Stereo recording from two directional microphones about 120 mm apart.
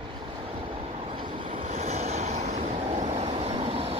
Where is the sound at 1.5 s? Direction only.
60° right (ahead or behind).